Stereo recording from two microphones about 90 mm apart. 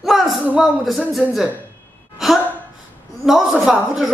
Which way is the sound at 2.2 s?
5° right (ahead or behind).